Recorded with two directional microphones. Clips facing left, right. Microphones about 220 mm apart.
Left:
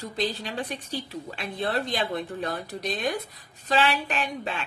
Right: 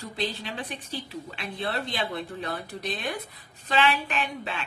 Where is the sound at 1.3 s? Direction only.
40° left (ahead or behind).